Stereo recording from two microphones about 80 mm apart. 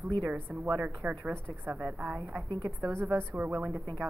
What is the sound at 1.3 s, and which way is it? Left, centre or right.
A woman's voice, right.